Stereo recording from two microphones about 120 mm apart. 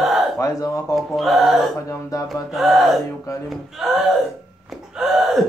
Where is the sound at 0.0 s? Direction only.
Centre (ahead or behind).